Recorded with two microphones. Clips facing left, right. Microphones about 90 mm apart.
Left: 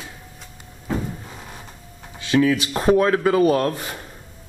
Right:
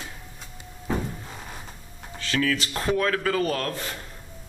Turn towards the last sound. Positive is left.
turn(degrees=20)  # may be behind; listen again after turning